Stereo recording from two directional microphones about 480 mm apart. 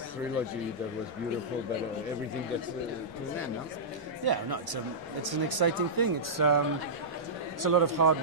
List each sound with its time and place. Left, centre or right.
4.2 s speech: right
7.6 s a man's voice: right